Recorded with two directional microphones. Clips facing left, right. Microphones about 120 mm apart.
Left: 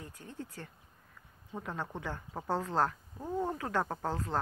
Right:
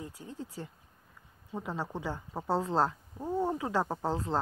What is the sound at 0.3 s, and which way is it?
Speech, 25° right (ahead or behind).